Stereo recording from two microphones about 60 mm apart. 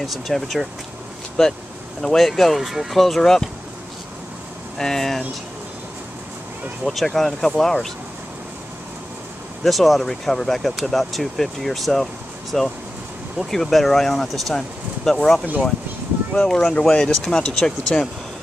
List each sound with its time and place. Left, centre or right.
0.0 s speech: centre
2.0 s speech: centre
4.7 s speech: centre
6.8 s speech: centre
9.6 s speech: centre